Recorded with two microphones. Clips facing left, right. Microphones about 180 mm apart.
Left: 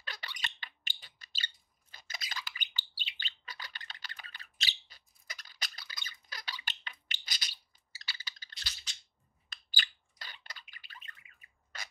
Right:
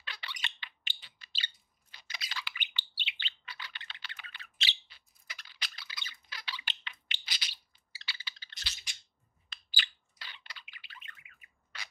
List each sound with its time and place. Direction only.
0.0 s a sound: 45° left (ahead or behind)
8.9 s scissors: 10° right (ahead or behind)
9.5 s bird: 45° left (ahead or behind)